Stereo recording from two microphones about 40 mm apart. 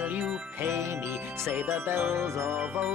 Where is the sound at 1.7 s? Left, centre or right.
Right.